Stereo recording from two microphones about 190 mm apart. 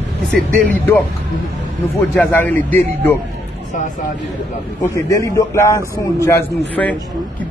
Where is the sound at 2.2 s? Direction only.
10° left (ahead or behind).